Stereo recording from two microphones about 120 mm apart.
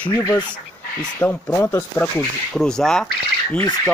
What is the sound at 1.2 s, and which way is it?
Speech, 15° left (ahead or behind).